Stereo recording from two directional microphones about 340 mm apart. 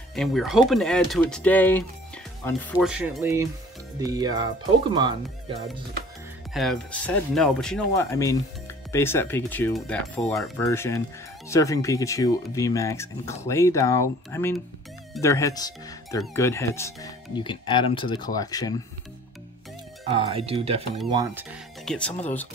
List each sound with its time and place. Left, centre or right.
0.1 s speech: centre
6.5 s speech: centre
20.1 s speech: centre
21.8 s speech: centre